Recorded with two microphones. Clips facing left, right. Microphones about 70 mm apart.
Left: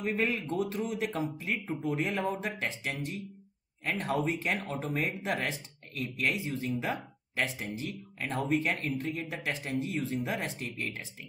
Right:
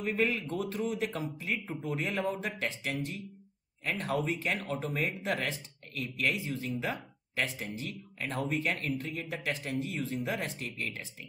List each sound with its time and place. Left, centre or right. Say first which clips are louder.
0.0 s speech: even; centre
2.7 s speech: right 1 dB; centre
4.3 s speech: left 1 dB; centre
9.8 s speech: left 2 dB; centre